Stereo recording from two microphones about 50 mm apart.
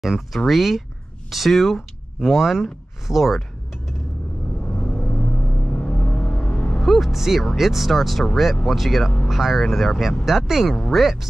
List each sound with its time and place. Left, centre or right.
0.5 s speech: centre
4.6 s vehicle: left
6.9 s speech: centre
10.7 s speech: centre